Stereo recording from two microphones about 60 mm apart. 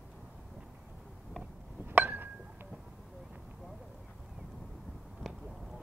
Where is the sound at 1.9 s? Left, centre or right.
Right.